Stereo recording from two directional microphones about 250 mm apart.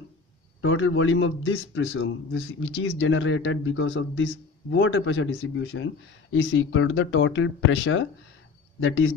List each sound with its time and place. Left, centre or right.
0.6 s a man's voice: left